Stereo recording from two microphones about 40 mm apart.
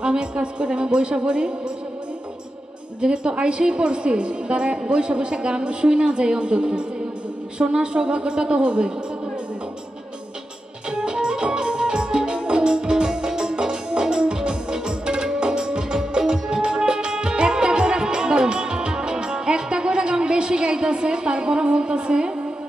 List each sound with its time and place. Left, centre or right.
0.0 s a woman's voice: right
3.0 s a woman's voice: right
10.9 s music: centre